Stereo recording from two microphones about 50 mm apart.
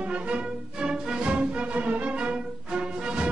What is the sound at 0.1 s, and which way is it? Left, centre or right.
Music, right.